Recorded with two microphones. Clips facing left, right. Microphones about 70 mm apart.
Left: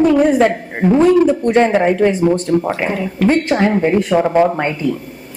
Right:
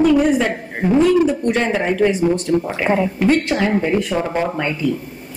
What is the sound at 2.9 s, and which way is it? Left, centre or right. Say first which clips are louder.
Speech: right 1 dB; right.